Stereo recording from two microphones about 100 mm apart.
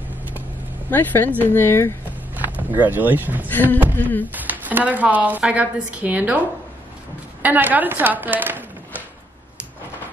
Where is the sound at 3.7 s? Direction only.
15° left (ahead or behind).